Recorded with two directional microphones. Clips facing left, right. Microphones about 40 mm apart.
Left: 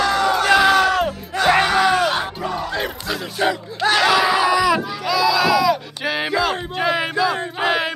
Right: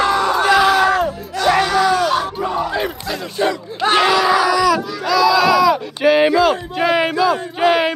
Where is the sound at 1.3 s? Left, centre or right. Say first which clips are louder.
Even; left.